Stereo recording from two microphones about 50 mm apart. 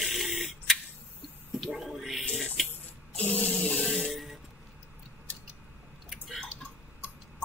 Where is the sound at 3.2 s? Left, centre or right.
Left.